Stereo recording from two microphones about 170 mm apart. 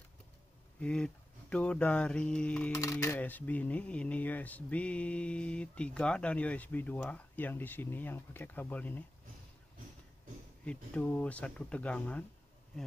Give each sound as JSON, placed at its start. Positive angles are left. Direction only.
{"t": 0.7, "sound": "speech", "side_deg": 5}
{"t": 2.7, "sound": "speech", "side_deg": 20}
{"t": 10.6, "sound": "speech", "side_deg": 5}